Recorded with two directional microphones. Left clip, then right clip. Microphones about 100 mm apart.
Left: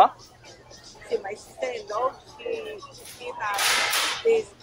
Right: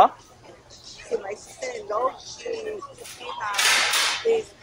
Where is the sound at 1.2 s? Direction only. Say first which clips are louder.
Left 1 dB; 15° right (ahead or behind).